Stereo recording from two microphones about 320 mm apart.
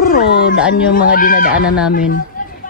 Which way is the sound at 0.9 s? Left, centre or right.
Left.